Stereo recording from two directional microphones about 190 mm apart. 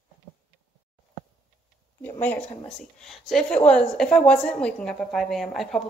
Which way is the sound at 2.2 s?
10° left (ahead or behind).